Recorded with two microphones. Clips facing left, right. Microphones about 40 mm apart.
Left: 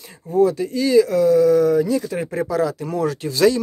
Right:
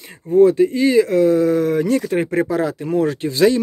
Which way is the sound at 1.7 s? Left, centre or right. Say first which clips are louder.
Right 2 dB; right.